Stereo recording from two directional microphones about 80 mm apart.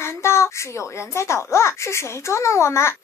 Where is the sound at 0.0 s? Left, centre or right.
Left.